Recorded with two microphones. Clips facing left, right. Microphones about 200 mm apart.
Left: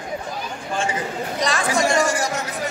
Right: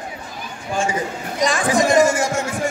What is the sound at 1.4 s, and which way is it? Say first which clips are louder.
Speech: right 4 dB; 15° right (ahead or behind).